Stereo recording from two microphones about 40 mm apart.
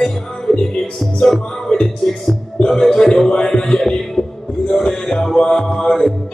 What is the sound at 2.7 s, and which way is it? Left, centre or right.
Music, centre.